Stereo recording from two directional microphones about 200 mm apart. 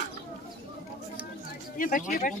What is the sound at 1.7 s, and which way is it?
Speech, 40° left (ahead or behind).